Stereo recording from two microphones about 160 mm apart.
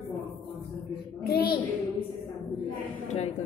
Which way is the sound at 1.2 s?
75° left (ahead or behind).